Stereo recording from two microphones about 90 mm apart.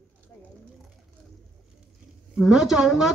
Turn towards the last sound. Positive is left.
turn(degrees=-5)  # may be behind; listen again after turning